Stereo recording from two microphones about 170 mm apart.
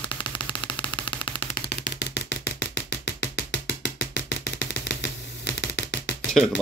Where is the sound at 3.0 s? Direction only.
90° left.